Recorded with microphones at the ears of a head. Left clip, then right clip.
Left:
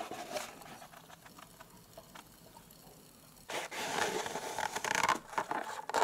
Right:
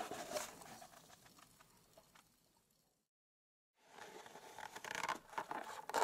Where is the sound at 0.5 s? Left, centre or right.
Left.